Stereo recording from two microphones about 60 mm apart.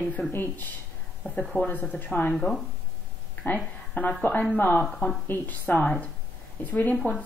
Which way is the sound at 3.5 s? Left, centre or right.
Left.